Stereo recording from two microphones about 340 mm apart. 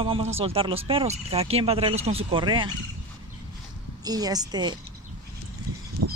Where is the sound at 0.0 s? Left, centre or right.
Centre.